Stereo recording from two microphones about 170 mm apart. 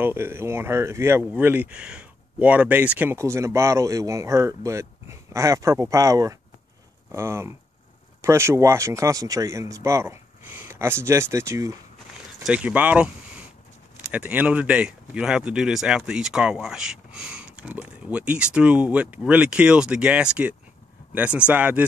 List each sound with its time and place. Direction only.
0.0 s speech: 15° right (ahead or behind)